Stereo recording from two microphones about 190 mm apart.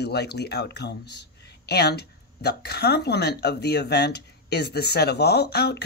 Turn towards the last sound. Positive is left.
turn(degrees=60)  # may be behind; listen again after turning